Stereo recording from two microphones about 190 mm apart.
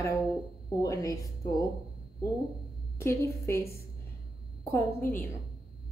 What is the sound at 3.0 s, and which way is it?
Speech, 15° left (ahead or behind).